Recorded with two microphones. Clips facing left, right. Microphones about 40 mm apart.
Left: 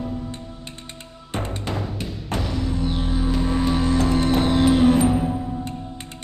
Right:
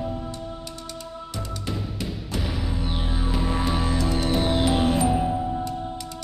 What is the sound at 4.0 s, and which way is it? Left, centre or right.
Music, left.